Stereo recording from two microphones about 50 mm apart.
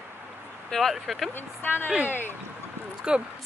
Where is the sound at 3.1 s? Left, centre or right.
Centre.